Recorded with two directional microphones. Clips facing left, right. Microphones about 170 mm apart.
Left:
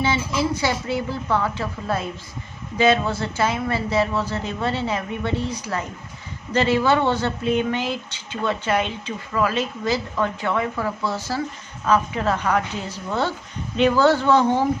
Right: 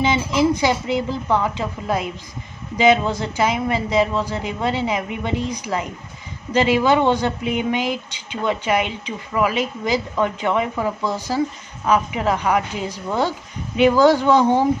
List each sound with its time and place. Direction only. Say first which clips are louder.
0.0 s speech: right 4 dB; 15° right (ahead or behind)